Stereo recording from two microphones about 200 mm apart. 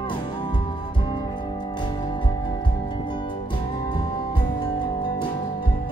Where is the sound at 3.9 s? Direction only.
25° left (ahead or behind).